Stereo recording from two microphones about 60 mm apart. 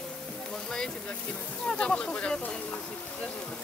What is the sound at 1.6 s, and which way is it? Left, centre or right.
Speech, centre.